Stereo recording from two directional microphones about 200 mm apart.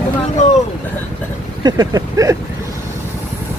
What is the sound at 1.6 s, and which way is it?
Vehicle, 20° right (ahead or behind).